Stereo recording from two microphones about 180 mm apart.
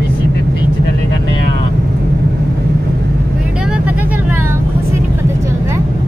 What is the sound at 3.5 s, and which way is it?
Vehicle, 5° right (ahead or behind).